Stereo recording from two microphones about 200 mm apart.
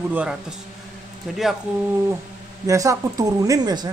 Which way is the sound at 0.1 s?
5° right (ahead or behind).